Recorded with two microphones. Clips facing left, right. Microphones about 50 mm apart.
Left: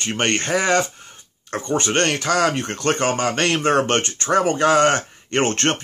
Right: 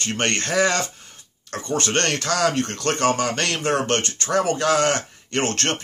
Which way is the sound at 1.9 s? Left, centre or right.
Centre.